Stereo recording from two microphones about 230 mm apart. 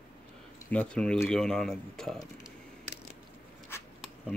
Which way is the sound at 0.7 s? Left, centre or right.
Centre.